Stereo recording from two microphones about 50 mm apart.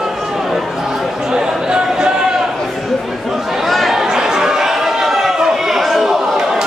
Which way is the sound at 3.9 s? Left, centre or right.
Centre.